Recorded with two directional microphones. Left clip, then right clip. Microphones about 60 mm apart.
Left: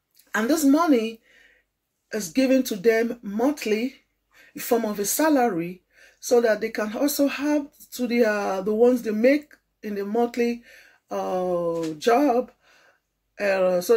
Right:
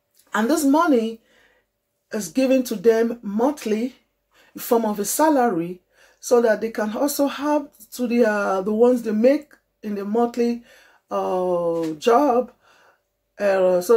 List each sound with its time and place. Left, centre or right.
0.4 s speech: right
12.0 s a sound: right
13.3 s speech: right